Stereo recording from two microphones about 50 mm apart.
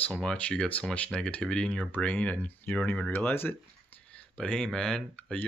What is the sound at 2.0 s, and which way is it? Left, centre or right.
Speech, left.